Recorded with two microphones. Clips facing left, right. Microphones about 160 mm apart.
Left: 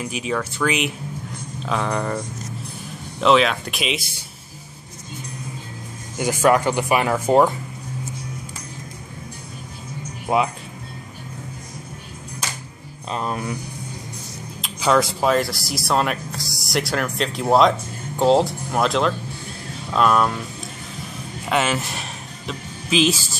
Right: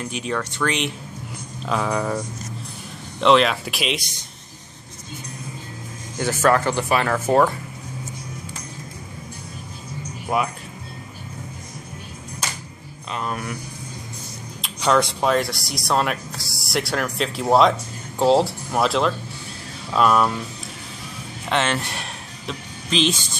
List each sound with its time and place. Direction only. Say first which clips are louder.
0.0 s speech: left 1 dB; 5° left (ahead or behind)
6.1 s speech: left 1 dB; 15° left (ahead or behind)
10.2 s speech: left 3 dB; 25° left (ahead or behind)
13.1 s a sound: left 2 dB; 25° left (ahead or behind)
14.6 s speech: left 1 dB; centre (ahead or behind)
21.5 s speech: left 1 dB; 5° left (ahead or behind)